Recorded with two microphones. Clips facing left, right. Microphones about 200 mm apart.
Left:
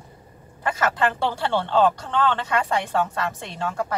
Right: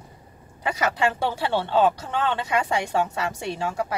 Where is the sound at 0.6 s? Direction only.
10° right (ahead or behind).